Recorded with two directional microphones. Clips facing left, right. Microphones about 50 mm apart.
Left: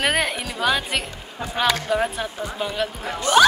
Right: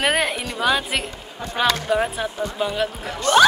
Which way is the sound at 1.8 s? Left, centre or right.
Centre.